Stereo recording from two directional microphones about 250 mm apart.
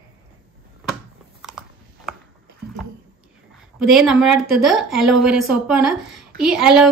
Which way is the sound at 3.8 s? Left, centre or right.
Centre.